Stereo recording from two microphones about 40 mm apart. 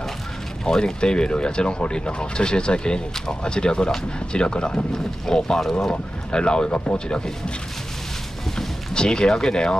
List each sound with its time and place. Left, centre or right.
0.7 s speech: centre
6.3 s speech: left
8.5 s speech: centre